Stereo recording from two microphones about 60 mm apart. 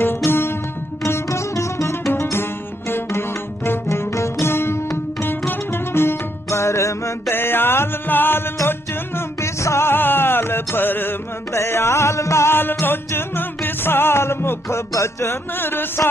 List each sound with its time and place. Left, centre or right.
0.0 s music: left
1.0 s music: left
7.2 s music: left
9.6 s music: left
11.5 s music: left
15.6 s music: left